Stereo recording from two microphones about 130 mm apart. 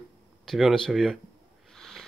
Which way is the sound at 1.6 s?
5° left (ahead or behind).